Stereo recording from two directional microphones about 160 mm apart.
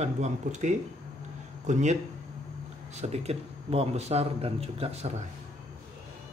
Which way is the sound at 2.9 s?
40° right (ahead or behind).